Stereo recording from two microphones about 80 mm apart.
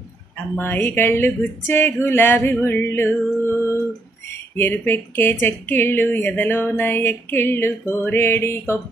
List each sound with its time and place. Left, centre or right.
0.6 s speech: left
2.6 s music: left
4.6 s speech: left